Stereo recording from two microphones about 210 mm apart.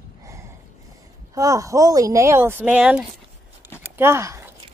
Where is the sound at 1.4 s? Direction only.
15° right (ahead or behind).